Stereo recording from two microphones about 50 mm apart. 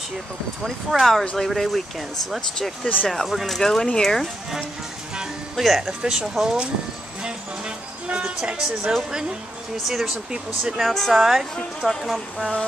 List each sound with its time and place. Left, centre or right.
0.7 s speech: centre
1.2 s speech: centre
1.5 s speech: centre
5.6 s speech: centre
7.2 s music: centre
9.8 s speech: centre